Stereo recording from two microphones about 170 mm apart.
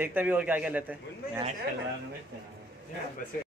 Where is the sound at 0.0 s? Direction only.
10° right (ahead or behind).